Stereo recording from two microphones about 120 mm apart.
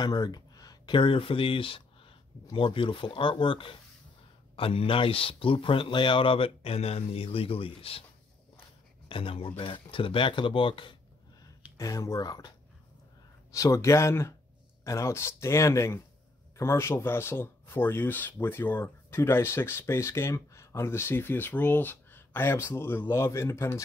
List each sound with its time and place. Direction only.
0.0 s speech: 35° left (ahead or behind); by 8.0 s 50° left (ahead or behind)
9.1 s speech: 50° left (ahead or behind)
11.7 s speech: 25° left (ahead or behind)